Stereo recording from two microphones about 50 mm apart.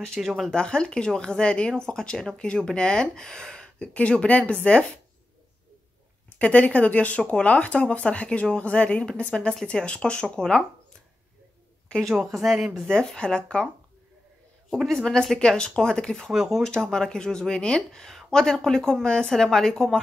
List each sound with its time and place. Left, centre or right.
0.2 s speech: centre
0.5 s speech: centre
6.3 s speech: left
11.9 s speech: left
12.3 s speech: centre
12.9 s speech: centre
14.9 s speech: centre
15.3 s speech: centre
16.3 s speech: centre
16.6 s speech: centre